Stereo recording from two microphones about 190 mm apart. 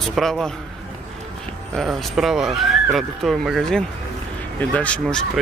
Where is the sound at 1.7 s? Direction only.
Centre (ahead or behind).